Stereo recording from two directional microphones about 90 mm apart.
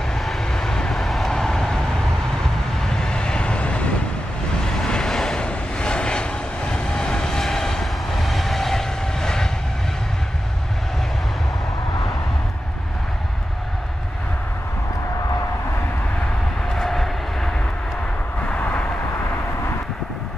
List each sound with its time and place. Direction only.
0.1 s vehicle: centre (ahead or behind)
16.7 s vehicle: centre (ahead or behind)
18.5 s vehicle: 15° left (ahead or behind)